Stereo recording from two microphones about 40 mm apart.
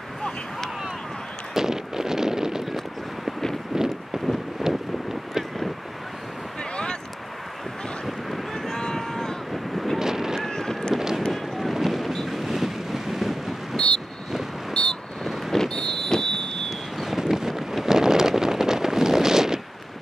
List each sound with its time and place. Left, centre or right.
1.5 s a sound: centre
3.7 s wind: centre
4.6 s vehicle: centre
8.5 s a sound: centre
9.5 s wind noise: centre
9.9 s boat: centre
10.4 s boat: centre
11.0 s vehicle: centre
12.3 s boat: centre
13.7 s wind noise: centre
14.7 s vehicle: centre
15.5 s a sound: centre
17.0 s a sound: centre